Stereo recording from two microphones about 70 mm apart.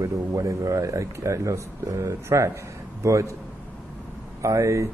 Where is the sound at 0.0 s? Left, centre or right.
Right.